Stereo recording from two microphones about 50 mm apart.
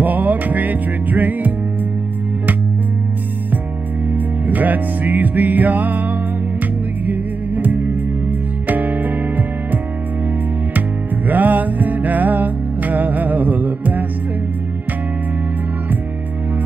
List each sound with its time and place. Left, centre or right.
0.0 s music: right
4.1 s music: right
11.2 s music: right